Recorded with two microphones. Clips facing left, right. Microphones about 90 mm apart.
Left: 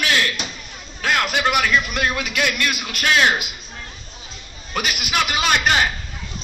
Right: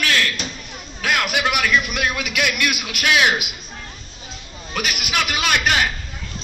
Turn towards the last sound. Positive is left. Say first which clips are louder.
# left 1 dB
turn(degrees=0)  # may be behind; listen again after turning